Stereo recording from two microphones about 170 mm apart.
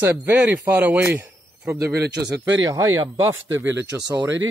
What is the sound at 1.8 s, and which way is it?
Speech, 70° right (ahead or behind).